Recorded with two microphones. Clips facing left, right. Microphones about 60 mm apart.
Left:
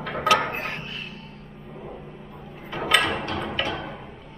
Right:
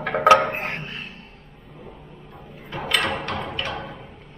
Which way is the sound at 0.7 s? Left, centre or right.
Right.